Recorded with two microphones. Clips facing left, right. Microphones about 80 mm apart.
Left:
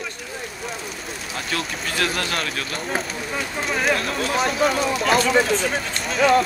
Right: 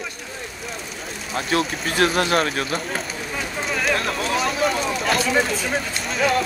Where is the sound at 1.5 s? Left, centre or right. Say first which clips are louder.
Right 5 dB; right.